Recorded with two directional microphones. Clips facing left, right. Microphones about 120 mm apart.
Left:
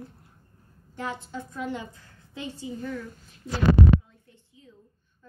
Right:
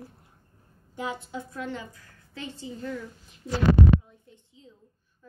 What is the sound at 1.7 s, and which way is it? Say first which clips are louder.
A woman's voice: left 2 dB; 20° left (ahead or behind).